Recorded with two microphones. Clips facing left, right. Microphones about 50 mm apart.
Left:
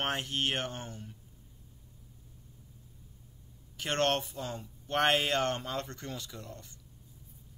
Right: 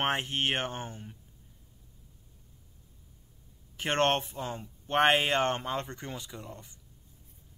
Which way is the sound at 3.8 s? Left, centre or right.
Right.